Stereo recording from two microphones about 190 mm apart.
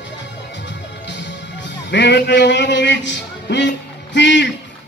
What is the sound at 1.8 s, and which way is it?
A man's voice, 65° left (ahead or behind).